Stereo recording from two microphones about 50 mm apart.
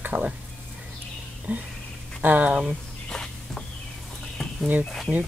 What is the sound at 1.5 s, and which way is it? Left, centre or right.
Speech, right.